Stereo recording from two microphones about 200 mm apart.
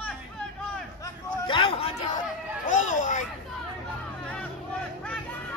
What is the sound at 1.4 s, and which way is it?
Speech, 25° left (ahead or behind).